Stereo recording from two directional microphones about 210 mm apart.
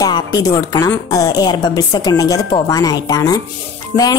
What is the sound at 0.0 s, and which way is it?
A woman's voice, 15° left (ahead or behind).